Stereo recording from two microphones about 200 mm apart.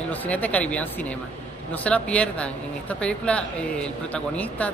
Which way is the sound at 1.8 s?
5° left (ahead or behind).